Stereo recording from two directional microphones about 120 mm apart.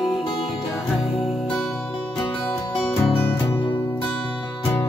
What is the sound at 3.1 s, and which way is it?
Music, 15° left (ahead or behind).